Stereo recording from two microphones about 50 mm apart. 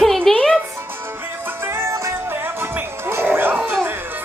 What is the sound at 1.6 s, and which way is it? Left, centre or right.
Music, right.